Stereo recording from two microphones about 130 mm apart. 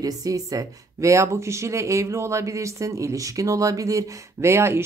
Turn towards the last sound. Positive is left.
turn(degrees=-20)  # may be behind; listen again after turning